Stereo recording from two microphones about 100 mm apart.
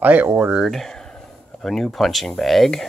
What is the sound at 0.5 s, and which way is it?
Speech, centre (ahead or behind).